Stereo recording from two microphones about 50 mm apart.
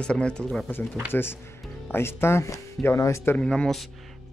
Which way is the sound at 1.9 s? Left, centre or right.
Left.